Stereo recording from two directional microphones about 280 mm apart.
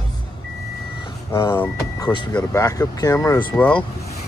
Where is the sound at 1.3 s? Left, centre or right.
Centre.